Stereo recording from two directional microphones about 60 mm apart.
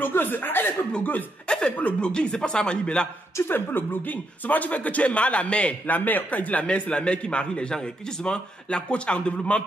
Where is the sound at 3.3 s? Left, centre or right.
Left.